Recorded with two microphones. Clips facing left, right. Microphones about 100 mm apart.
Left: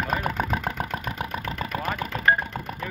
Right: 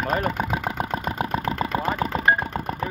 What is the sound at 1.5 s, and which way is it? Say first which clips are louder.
Engine: right 5 dB; 25° right (ahead or behind).